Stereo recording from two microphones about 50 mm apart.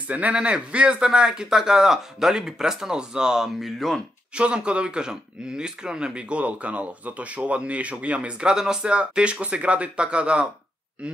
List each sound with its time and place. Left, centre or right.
0.1 s speech: right; by 3.7 s centre
4.4 s speech: right